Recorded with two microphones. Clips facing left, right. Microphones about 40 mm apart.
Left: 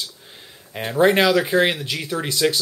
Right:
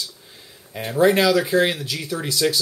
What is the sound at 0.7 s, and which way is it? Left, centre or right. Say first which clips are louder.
Speech: even; left.